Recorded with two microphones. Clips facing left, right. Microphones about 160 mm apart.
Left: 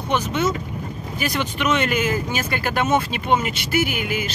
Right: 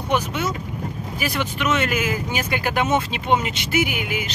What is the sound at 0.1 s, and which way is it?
Speech, 10° right (ahead or behind).